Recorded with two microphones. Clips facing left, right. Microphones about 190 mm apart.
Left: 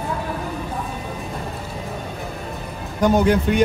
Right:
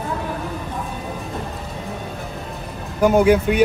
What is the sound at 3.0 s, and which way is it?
Speech, 10° right (ahead or behind).